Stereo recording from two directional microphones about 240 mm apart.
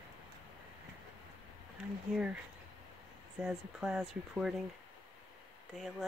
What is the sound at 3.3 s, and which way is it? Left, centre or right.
Speech, centre.